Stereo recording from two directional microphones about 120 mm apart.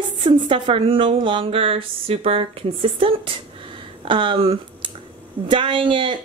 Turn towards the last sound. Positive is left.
turn(degrees=-45)  # may be behind; listen again after turning